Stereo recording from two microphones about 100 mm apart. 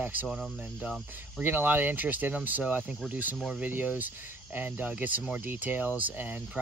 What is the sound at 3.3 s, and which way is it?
Speech, 5° right (ahead or behind).